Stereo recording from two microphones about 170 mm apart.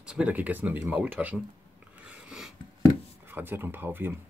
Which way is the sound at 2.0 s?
5° right (ahead or behind).